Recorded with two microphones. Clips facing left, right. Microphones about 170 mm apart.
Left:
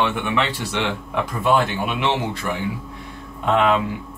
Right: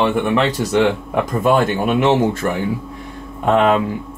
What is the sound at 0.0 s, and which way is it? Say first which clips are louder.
Speech: right 6 dB; 40° right (ahead or behind).